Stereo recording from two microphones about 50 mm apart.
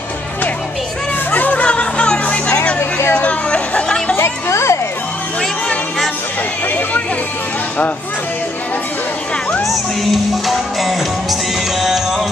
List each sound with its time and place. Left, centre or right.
1.3 s music: left
2.8 s vehicle: left
3.2 s chatter: left
4.2 s a sound: left
9.7 s music: centre